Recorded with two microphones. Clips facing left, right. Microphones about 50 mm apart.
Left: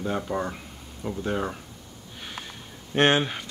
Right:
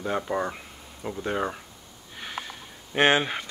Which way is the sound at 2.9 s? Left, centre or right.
Centre.